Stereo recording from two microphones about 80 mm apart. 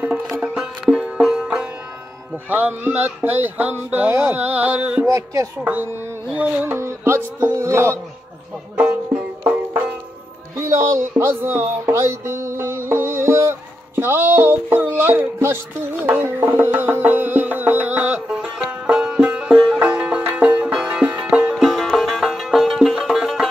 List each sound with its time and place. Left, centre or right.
0.3 s music: centre
2.5 s speech: right
5.0 s music: right
5.6 s speech: right
6.2 s music: centre
6.6 s music: right
8.7 s music: centre
10.5 s speech: right
18.3 s music: centre
21.5 s music: centre